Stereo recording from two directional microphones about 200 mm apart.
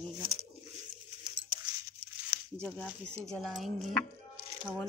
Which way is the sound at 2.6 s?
5° left (ahead or behind).